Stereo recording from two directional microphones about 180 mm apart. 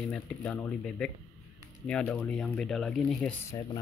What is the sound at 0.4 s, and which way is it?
Speech, 10° left (ahead or behind).